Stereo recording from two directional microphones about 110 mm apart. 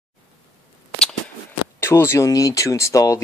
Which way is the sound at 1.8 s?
25° left (ahead or behind).